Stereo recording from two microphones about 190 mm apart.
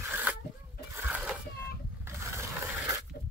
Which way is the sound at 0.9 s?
10° right (ahead or behind).